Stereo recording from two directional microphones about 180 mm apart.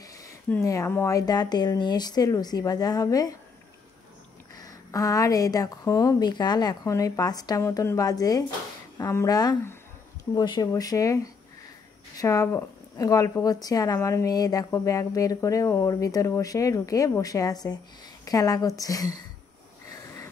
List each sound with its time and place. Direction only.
0.5 s speech: 15° left (ahead or behind)
4.6 s speech: 20° left (ahead or behind)